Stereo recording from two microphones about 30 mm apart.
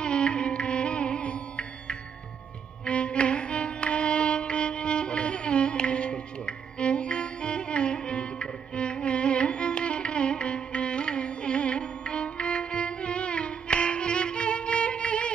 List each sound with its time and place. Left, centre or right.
0.0 s music: left
2.8 s music: left